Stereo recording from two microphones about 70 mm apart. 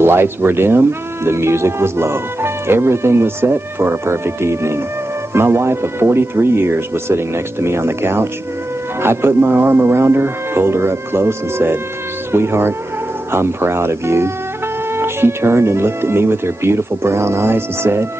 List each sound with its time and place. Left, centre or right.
0.0 s speech: right